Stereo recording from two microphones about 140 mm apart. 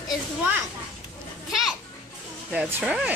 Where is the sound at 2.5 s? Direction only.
10° right (ahead or behind).